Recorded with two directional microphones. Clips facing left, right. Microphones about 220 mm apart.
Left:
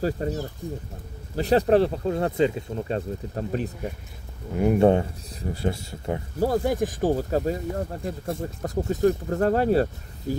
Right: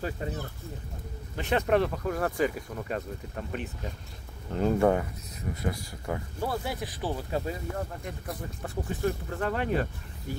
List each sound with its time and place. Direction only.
0.0 s speech: 40° left (ahead or behind)
4.5 s speech: 10° left (ahead or behind)
4.7 s speech: 25° left (ahead or behind)
6.4 s speech: 40° left (ahead or behind)